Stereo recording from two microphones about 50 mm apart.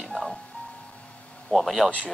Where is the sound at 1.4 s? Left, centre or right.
Centre.